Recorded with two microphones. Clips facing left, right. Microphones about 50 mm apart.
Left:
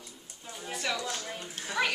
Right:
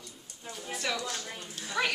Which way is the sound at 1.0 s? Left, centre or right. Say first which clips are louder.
Left 1 dB; left.